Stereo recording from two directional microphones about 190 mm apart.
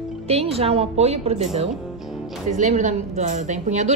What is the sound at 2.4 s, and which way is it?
A woman's voice, 40° right (ahead or behind).